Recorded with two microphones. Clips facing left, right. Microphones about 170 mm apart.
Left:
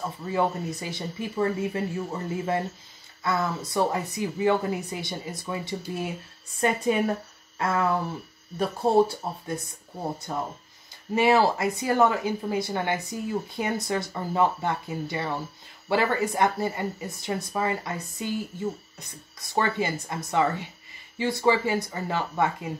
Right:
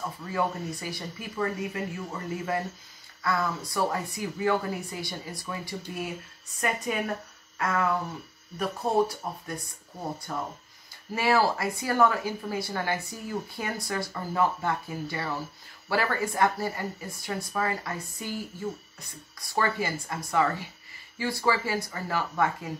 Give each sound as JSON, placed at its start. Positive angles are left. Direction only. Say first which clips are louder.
{"t": 0.3, "sound": "speech", "louder": "left 4 dB", "side_deg": 20}
{"t": 7.5, "sound": "a sound", "louder": "left 2 dB", "side_deg": 30}
{"t": 8.5, "sound": "speech", "louder": "left 4 dB", "side_deg": 30}